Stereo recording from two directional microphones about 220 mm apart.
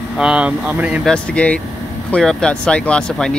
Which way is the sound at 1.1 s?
5° left (ahead or behind).